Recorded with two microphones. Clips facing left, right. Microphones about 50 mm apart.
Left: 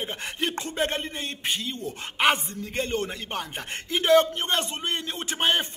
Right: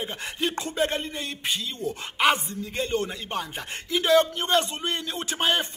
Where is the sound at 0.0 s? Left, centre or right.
Left.